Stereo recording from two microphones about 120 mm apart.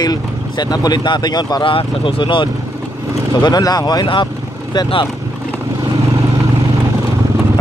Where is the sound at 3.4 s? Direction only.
35° left (ahead or behind).